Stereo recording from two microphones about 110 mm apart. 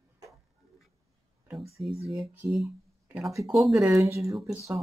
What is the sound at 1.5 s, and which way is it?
Speech, centre (ahead or behind).